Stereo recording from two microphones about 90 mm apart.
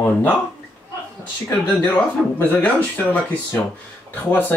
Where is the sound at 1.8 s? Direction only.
20° left (ahead or behind).